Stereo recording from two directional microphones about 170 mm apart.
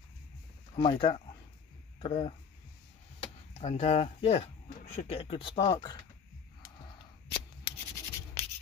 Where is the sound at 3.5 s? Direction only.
40° left (ahead or behind).